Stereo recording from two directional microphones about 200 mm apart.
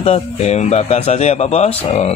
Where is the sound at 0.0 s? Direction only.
30° left (ahead or behind).